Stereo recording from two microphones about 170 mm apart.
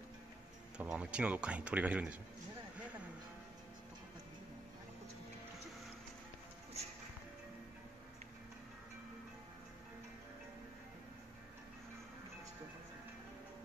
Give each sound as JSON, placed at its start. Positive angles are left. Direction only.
{"t": 0.7, "sound": "speech", "side_deg": -5}